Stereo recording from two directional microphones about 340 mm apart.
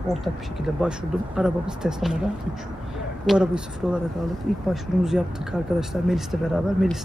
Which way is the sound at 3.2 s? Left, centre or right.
Centre.